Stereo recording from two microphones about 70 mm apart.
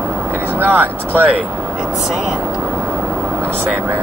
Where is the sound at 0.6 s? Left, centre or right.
Right.